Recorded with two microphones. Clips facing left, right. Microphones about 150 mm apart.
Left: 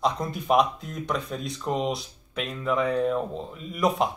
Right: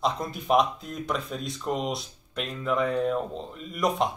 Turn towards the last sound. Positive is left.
turn(degrees=0)  # may be behind; listen again after turning